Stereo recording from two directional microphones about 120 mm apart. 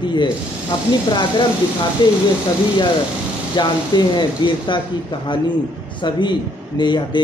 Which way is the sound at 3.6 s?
40° left (ahead or behind).